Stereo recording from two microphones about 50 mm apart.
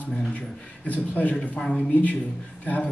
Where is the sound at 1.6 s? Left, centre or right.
Left.